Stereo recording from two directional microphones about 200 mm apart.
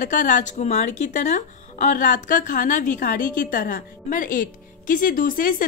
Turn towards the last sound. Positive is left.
turn(degrees=45)  # may be behind; listen again after turning